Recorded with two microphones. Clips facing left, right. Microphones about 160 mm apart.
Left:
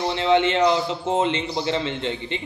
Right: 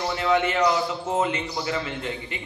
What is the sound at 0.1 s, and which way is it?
A man's voice, 25° left (ahead or behind).